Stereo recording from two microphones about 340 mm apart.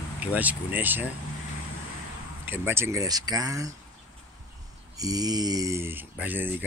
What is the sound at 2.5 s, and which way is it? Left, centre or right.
Speech, centre.